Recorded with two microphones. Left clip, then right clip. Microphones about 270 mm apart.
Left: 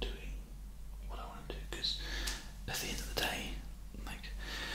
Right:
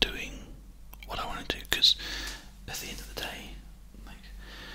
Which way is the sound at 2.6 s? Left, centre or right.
Centre.